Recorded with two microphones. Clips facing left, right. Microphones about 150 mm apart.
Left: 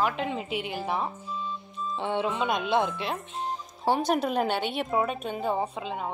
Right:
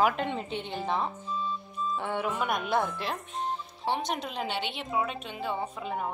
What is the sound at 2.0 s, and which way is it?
Speech, 25° left (ahead or behind).